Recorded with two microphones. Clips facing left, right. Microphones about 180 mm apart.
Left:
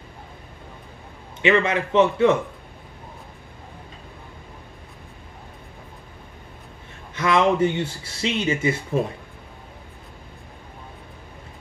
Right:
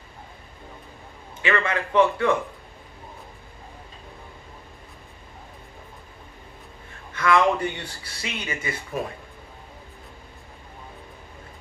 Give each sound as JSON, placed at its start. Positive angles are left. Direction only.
{"t": 1.4, "sound": "speech", "side_deg": 20}
{"t": 7.2, "sound": "speech", "side_deg": 20}